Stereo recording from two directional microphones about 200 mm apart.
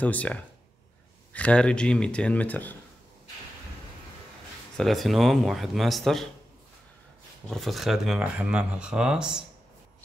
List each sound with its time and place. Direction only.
0.0 s speech: 5° left (ahead or behind)
4.7 s speech: centre (ahead or behind)
7.4 s speech: centre (ahead or behind)